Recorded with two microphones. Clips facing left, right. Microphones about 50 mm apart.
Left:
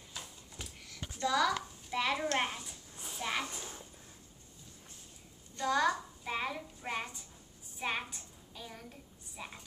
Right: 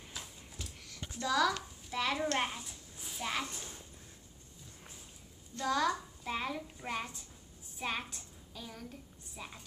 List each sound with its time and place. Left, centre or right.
0.2 s a sound: centre
2.3 s a woman's voice: centre
5.6 s a woman's voice: centre